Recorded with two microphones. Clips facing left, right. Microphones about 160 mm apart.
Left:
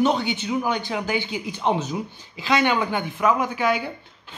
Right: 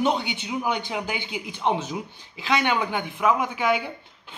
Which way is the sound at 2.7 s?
15° right (ahead or behind).